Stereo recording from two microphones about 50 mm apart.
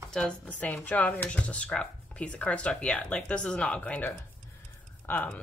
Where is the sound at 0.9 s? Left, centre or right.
Left.